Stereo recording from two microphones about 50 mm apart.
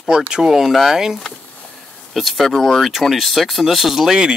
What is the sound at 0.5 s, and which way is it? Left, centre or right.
Speech, centre.